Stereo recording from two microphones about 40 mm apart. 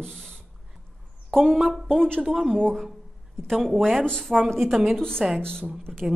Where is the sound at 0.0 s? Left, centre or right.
Centre.